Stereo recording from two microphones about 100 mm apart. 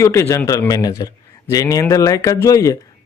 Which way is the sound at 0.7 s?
40° left (ahead or behind).